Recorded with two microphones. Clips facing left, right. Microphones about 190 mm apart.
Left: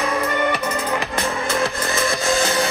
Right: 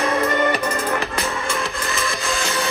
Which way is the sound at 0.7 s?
15° left (ahead or behind).